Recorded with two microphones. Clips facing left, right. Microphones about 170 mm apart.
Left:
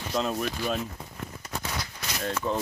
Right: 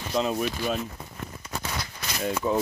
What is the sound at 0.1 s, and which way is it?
Speech, 5° right (ahead or behind).